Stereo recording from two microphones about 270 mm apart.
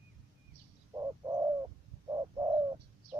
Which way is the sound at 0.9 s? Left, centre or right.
Centre.